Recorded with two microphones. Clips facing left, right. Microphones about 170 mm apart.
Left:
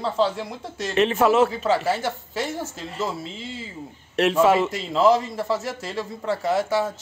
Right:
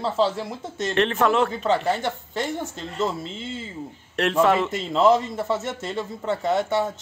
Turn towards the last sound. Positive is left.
turn(degrees=0)  # may be behind; listen again after turning